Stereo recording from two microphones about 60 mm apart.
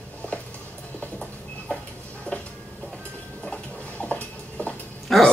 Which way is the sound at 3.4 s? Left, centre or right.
Left.